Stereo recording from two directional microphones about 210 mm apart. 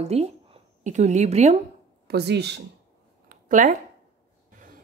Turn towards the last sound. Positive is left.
turn(degrees=-40)  # may be behind; listen again after turning